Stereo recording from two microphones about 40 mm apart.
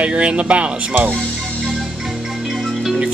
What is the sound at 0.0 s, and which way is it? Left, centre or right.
Speech, right.